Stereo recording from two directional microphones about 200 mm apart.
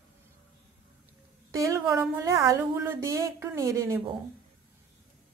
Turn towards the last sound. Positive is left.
turn(degrees=-15)  # may be behind; listen again after turning